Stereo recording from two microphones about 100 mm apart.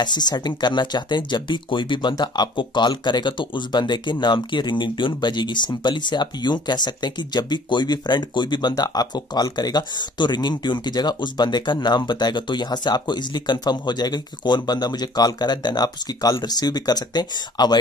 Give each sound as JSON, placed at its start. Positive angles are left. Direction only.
{"t": 0.0, "sound": "speech", "side_deg": 45}